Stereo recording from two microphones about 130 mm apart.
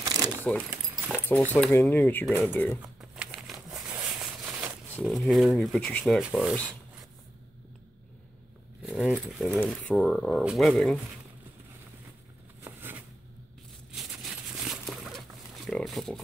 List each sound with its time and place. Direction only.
0.0 s keys jangling: 30° right (ahead or behind)
0.4 s speech: 10° left (ahead or behind)
3.0 s crumpling: 5° right (ahead or behind)
3.7 s a sound: 10° right (ahead or behind)
5.0 s speech: centre (ahead or behind)
8.8 s speech: centre (ahead or behind)
12.6 s a sound: 15° right (ahead or behind)
13.9 s pig: centre (ahead or behind)